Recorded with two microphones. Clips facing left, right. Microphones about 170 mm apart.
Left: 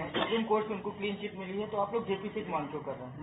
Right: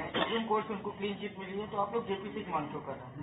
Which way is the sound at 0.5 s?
20° left (ahead or behind).